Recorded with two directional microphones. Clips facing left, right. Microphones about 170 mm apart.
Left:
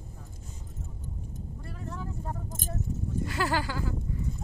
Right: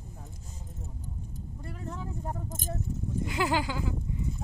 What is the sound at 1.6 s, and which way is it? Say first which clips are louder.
Vehicle: right 1 dB; 20° right (ahead or behind).